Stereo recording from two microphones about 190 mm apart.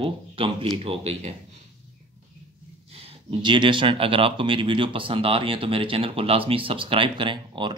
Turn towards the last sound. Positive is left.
turn(degrees=-25)  # may be behind; listen again after turning